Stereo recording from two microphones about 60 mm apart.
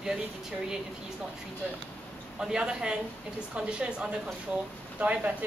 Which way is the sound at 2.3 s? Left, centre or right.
Centre.